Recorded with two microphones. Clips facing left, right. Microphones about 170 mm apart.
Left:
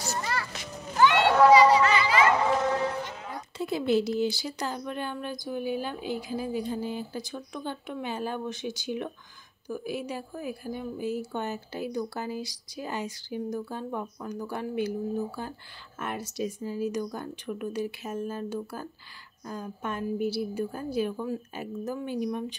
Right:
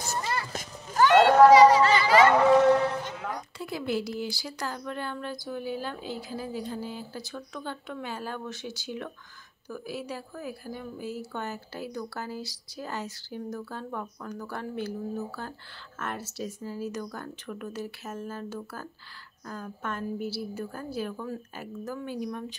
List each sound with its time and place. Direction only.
0.2 s children playing: 20° right (ahead or behind)
0.5 s children playing: 45° right (ahead or behind)
2.0 s a sound: 40° right (ahead or behind)
3.5 s a woman's voice: 25° left (ahead or behind)